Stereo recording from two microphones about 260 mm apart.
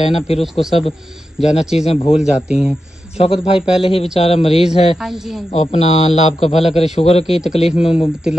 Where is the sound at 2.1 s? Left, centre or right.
Centre.